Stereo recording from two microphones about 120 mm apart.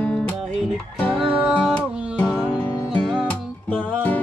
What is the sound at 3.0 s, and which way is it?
Music, 5° left (ahead or behind).